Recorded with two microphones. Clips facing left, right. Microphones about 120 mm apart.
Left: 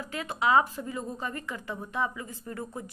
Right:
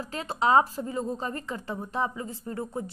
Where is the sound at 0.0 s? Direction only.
35° right (ahead or behind).